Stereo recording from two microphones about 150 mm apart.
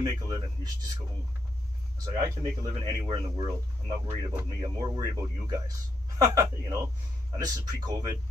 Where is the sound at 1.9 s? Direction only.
25° right (ahead or behind).